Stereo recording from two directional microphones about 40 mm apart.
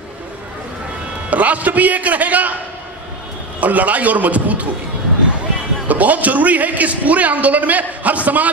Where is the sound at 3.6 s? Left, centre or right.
Right.